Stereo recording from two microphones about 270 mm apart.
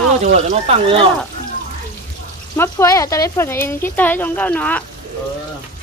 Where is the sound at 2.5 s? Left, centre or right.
Centre.